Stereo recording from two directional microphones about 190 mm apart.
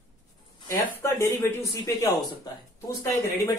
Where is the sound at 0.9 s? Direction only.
15° left (ahead or behind).